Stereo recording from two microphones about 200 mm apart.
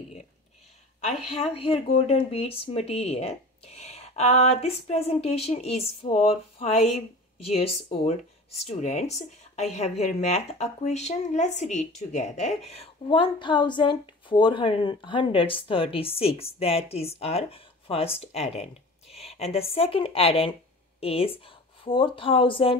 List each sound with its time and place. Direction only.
1.0 s speech: 30° left (ahead or behind)